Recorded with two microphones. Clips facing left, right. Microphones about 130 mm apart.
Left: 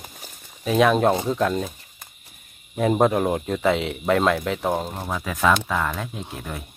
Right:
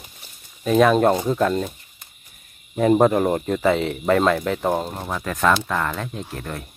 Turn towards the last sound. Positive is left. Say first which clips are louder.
# right 2 dB
turn(degrees=5)  # may be behind; listen again after turning